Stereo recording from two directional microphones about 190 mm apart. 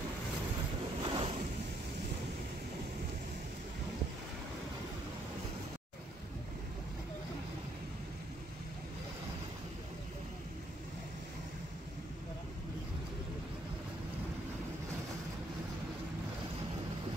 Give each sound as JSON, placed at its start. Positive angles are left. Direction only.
{"t": 1.0, "sound": "ocean", "side_deg": -30}